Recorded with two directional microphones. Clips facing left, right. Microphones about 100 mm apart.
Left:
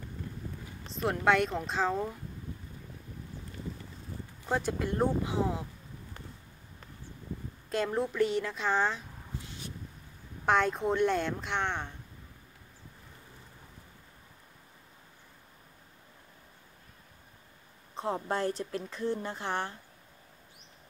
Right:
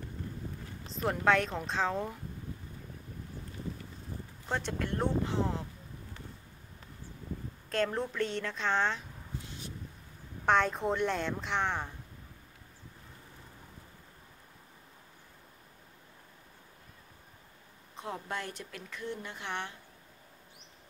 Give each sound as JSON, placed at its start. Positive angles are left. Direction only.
{"t": 0.9, "sound": "a woman's voice", "side_deg": 0}
{"t": 4.5, "sound": "speech", "side_deg": 10}
{"t": 7.7, "sound": "a woman's voice", "side_deg": 5}
{"t": 10.4, "sound": "a woman's voice", "side_deg": 0}
{"t": 17.9, "sound": "a woman's voice", "side_deg": 35}